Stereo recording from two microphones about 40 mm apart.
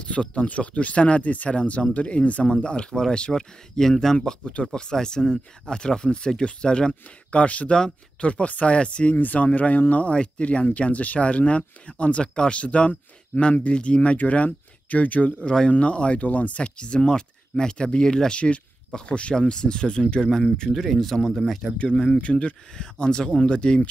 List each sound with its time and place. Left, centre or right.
0.0 s speech: left
2.4 s speech: left
6.9 s speech: left
7.7 s speech: left
8.3 s speech: left
9.1 s speech: left
15.4 s speech: centre
15.7 s speech: left
20.7 s speech: centre
21.7 s speech: left